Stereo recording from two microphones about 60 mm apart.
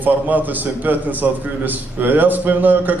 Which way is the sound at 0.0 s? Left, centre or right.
Right.